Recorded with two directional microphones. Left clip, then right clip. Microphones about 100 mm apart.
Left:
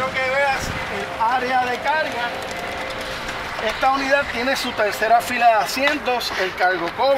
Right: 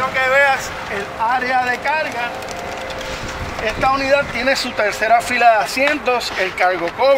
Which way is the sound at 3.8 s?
10° right (ahead or behind).